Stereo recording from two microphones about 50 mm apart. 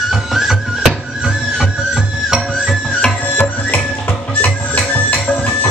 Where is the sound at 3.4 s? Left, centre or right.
Left.